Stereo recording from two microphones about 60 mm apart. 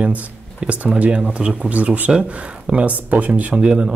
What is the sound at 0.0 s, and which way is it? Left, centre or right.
Speech, right.